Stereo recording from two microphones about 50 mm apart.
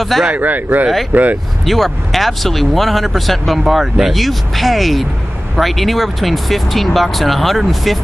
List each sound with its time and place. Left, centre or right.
0.2 s speech: right
1.7 s speech: centre